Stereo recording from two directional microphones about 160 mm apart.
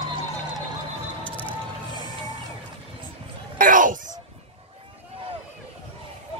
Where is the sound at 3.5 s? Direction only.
55° right (ahead or behind).